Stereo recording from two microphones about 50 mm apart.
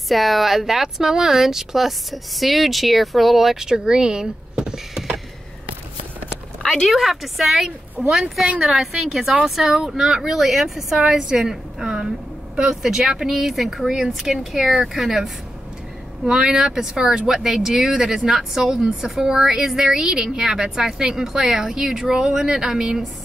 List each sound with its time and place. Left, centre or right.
0.1 s speech: centre
6.6 s speech: centre